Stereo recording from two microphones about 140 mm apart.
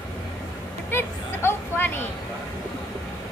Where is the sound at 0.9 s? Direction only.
15° left (ahead or behind).